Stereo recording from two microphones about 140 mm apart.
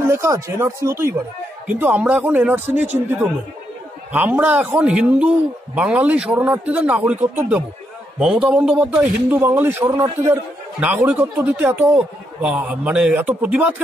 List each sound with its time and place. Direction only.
0.0 s a man's voice: 20° right (ahead or behind)
9.8 s speech: 25° right (ahead or behind)
11.1 s a man's voice: 10° right (ahead or behind)